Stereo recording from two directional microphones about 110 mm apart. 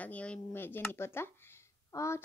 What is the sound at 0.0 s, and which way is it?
Speech, 10° left (ahead or behind).